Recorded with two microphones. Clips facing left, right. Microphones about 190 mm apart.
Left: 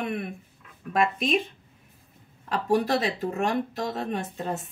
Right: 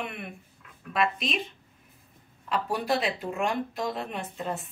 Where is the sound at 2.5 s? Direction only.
40° left (ahead or behind).